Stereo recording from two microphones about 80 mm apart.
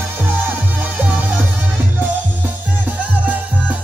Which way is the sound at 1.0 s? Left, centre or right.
Right.